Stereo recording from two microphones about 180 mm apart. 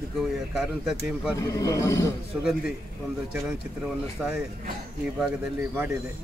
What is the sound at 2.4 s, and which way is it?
Speech, 5° right (ahead or behind).